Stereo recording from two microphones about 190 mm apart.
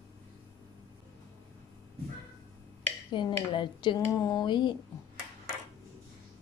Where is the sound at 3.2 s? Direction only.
25° left (ahead or behind).